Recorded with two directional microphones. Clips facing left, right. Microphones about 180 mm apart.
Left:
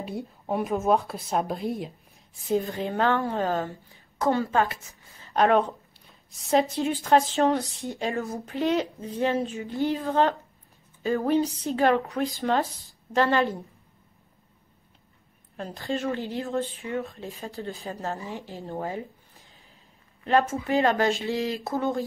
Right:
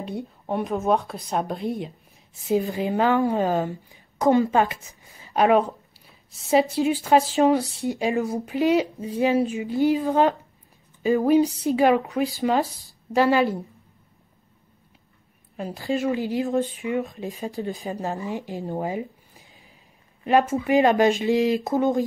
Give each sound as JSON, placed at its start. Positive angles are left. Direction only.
{"t": 0.0, "sound": "speech", "side_deg": 0}
{"t": 3.3, "sound": "speech", "side_deg": -15}
{"t": 15.5, "sound": "speech", "side_deg": -10}